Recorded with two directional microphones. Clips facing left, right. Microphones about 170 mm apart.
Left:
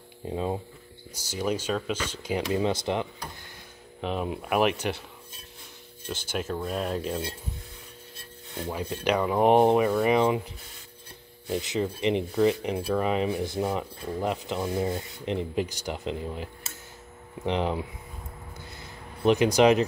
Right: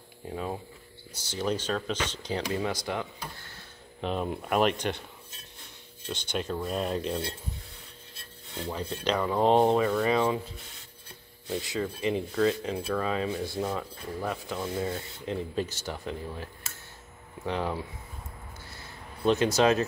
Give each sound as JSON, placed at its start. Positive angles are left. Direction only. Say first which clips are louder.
{"t": 0.3, "sound": "speech", "louder": "left 4 dB", "side_deg": 20}
{"t": 1.1, "sound": "speech", "louder": "left 1 dB", "side_deg": 10}
{"t": 2.4, "sound": "speech", "louder": "left 6 dB", "side_deg": 20}
{"t": 4.0, "sound": "speech", "louder": "left 1 dB", "side_deg": 0}
{"t": 6.0, "sound": "speech", "louder": "left 1 dB", "side_deg": 5}
{"t": 8.5, "sound": "speech", "louder": "left 2 dB", "side_deg": 10}
{"t": 18.7, "sound": "a sound", "louder": "left 2 dB", "side_deg": 15}